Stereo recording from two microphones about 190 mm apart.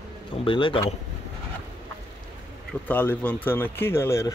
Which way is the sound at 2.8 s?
10° left (ahead or behind).